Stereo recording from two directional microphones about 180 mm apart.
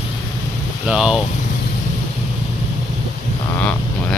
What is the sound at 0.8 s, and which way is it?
Speech, 5° right (ahead or behind).